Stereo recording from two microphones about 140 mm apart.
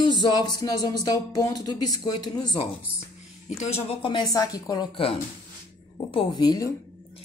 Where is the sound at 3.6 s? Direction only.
50° left (ahead or behind).